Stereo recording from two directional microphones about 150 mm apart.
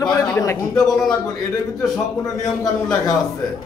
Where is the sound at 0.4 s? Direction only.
20° left (ahead or behind).